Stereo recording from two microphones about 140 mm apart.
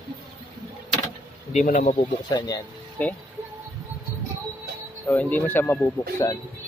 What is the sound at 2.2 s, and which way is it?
Speech, 25° left (ahead or behind).